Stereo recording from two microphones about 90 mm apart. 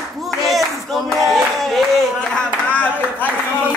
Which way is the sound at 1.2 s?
Centre (ahead or behind).